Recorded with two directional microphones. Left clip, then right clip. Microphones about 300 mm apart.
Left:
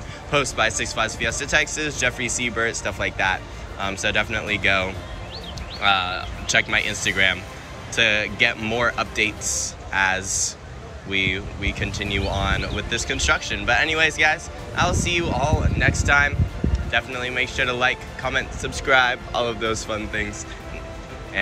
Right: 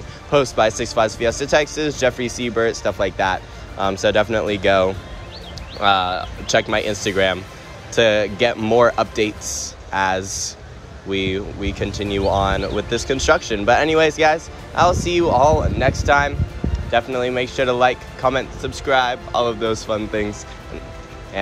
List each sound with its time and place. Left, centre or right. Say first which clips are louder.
0.3 s speech: right 5 dB; centre